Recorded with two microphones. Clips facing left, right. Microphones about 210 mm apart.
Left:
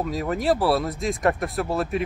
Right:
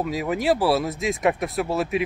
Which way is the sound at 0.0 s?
5° right (ahead or behind).